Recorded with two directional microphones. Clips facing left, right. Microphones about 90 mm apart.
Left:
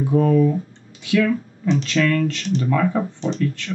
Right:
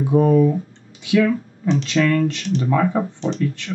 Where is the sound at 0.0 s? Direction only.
20° right (ahead or behind).